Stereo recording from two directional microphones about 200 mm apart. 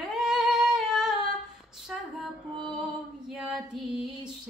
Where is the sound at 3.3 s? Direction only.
Centre (ahead or behind).